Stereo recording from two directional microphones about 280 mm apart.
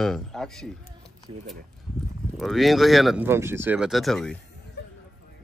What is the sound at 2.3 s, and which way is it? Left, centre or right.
Speech, centre.